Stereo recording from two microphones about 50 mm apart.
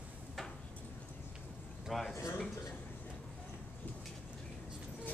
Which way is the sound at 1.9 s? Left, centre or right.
Centre.